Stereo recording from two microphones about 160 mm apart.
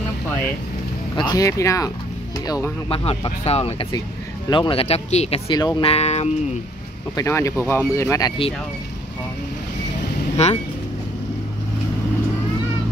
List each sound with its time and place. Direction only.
1.1 s speech: 25° left (ahead or behind)
2.9 s speech: 35° left (ahead or behind)
5.5 s speech: 25° left (ahead or behind)
5.9 s speech: 40° left (ahead or behind)
7.2 s speech: 20° left (ahead or behind)
10.3 s speech: 40° left (ahead or behind)